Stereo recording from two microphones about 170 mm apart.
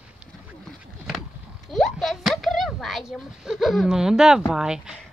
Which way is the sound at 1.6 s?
Centre (ahead or behind).